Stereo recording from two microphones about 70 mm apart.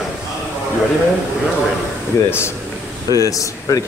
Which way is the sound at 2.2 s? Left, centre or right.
Left.